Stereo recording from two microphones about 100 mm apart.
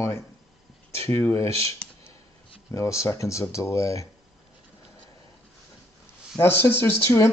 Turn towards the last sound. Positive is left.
turn(degrees=25)  # may be behind; listen again after turning